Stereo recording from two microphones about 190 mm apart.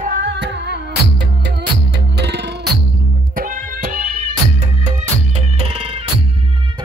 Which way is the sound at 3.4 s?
45° right (ahead or behind).